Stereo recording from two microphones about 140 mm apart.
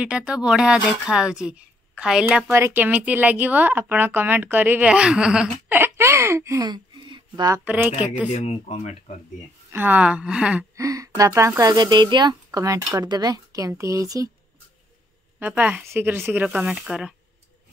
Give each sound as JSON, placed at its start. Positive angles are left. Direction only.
{"t": 0.0, "sound": "a woman's voice", "side_deg": -10}
{"t": 6.6, "sound": "a sound", "side_deg": -30}
{"t": 7.6, "sound": "a woman's voice", "side_deg": -10}
{"t": 8.3, "sound": "speech", "side_deg": 55}
{"t": 9.7, "sound": "a woman's voice", "side_deg": -15}
{"t": 10.8, "sound": "speech", "side_deg": -25}
{"t": 15.3, "sound": "a woman's voice", "side_deg": -10}